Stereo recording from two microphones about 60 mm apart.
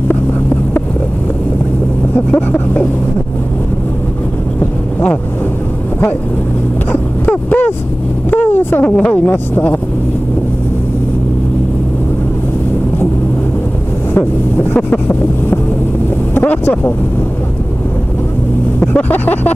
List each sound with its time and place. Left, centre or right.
2.1 s vehicle: left
6.9 s a sound: left
8.3 s speech: left
14.1 s vehicle: left
18.8 s vehicle: left